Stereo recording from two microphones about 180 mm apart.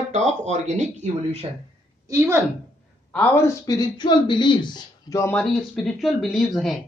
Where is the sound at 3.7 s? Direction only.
25° left (ahead or behind).